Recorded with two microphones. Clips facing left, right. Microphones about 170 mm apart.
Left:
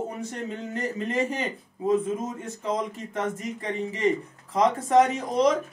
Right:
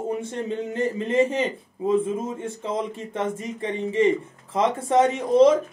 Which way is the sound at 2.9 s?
25° right (ahead or behind).